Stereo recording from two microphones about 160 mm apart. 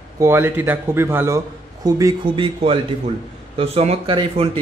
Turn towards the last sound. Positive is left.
turn(degrees=-35)  # may be behind; listen again after turning